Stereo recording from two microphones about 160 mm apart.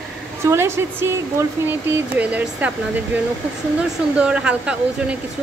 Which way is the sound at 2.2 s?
10° right (ahead or behind).